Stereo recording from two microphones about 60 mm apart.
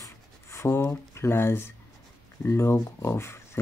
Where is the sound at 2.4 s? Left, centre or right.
Left.